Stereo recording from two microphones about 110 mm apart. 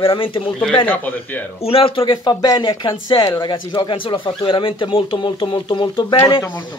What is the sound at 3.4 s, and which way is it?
A man's voice, 45° left (ahead or behind).